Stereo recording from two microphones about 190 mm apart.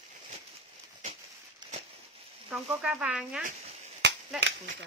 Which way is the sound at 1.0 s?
30° right (ahead or behind).